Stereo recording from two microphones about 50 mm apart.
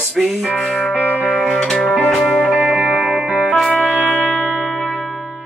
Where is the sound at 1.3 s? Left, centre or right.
Centre.